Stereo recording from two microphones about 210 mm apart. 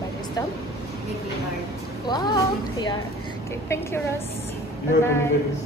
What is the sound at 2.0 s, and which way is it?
A woman's voice, 20° left (ahead or behind).